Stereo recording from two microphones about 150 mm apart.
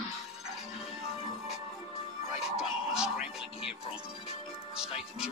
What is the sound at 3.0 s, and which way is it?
Speech, 5° right (ahead or behind).